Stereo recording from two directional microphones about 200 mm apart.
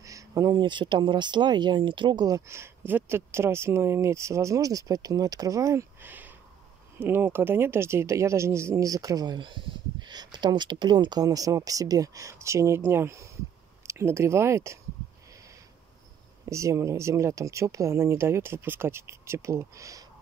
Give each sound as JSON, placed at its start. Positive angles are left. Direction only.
{"t": 0.0, "sound": "speech", "side_deg": -15}
{"t": 16.4, "sound": "speech", "side_deg": -15}